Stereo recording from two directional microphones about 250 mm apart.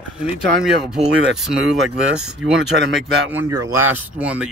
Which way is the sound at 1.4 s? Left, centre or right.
Centre.